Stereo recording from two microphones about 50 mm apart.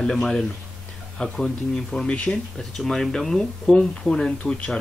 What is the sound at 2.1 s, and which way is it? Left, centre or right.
Speech, left.